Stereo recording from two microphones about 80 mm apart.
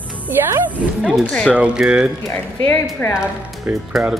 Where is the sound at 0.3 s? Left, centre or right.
Right.